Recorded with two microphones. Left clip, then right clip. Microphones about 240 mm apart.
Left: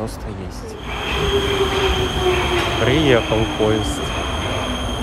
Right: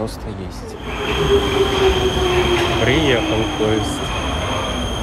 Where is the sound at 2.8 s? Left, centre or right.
Centre.